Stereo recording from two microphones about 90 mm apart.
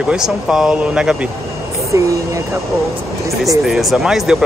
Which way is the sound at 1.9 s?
35° right (ahead or behind).